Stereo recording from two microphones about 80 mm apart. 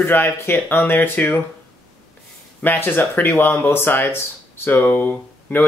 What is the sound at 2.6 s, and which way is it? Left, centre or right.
Speech, left.